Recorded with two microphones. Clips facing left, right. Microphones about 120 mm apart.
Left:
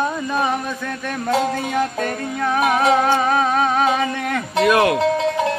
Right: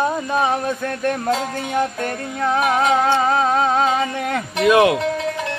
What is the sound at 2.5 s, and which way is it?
Music, 25° right (ahead or behind).